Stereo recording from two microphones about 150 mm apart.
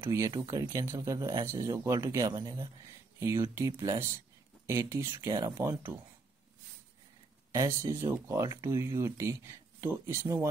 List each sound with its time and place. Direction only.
0.0 s speech: 20° right (ahead or behind)
7.5 s speech: 25° right (ahead or behind)